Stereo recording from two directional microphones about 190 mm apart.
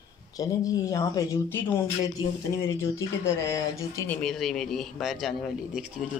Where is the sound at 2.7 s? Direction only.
15° left (ahead or behind).